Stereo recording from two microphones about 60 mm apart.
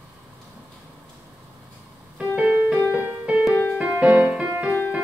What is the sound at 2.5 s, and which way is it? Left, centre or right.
Music, right.